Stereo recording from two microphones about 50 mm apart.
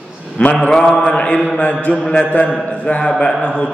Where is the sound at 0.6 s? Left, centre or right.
Centre.